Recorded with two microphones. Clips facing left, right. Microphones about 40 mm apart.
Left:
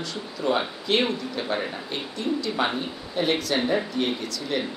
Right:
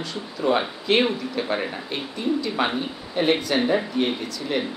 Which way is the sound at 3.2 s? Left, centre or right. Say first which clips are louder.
Right 3 dB; right.